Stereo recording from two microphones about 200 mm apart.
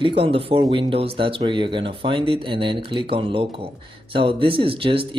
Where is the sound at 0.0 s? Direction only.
25° right (ahead or behind).